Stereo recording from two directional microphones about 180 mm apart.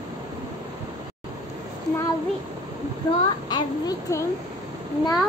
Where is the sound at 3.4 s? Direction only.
20° left (ahead or behind).